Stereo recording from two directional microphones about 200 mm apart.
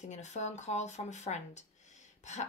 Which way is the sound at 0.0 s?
35° left (ahead or behind).